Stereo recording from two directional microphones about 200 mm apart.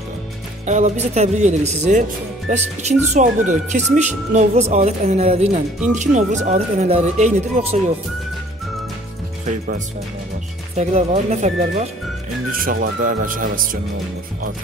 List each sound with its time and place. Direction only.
0.7 s speech: 35° right (ahead or behind)
10.8 s speech: 35° right (ahead or behind)
12.5 s speech: 45° right (ahead or behind)